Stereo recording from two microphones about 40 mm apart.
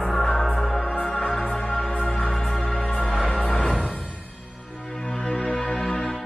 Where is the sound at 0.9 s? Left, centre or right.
Left.